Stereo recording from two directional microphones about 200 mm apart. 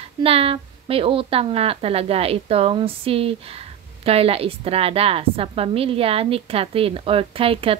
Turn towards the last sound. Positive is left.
turn(degrees=-25)  # may be behind; listen again after turning